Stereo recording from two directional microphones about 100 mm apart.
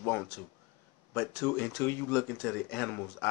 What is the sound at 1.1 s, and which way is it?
Speech, 20° left (ahead or behind).